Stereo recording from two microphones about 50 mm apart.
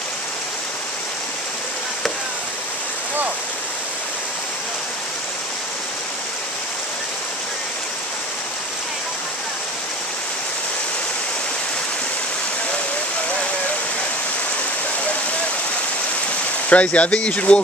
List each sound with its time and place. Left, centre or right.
16.6 s speech: left